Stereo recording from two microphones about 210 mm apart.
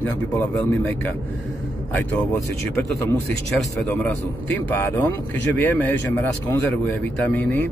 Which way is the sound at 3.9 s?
10° left (ahead or behind).